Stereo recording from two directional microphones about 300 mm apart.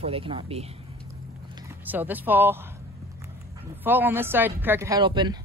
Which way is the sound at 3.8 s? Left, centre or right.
Centre.